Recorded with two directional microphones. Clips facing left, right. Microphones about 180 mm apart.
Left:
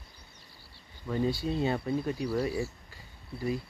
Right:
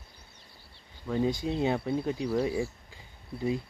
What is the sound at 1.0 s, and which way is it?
Speech, 15° right (ahead or behind).